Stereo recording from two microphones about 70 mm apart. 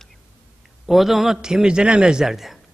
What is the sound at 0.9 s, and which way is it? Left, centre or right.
A man's voice, centre.